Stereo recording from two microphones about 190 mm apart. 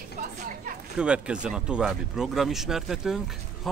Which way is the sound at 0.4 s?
40° right (ahead or behind).